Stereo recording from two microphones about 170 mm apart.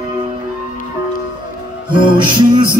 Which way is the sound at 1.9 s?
30° right (ahead or behind).